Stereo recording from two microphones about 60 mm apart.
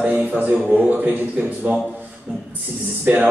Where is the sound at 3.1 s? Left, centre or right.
Right.